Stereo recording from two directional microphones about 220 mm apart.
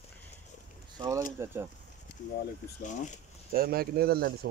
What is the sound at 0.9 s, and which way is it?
Speech, 20° right (ahead or behind).